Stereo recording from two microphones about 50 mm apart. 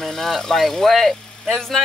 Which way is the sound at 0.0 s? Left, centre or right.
Centre.